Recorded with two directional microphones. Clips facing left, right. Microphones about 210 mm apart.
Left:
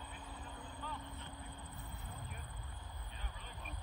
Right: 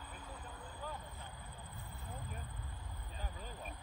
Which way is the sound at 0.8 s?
45° right (ahead or behind).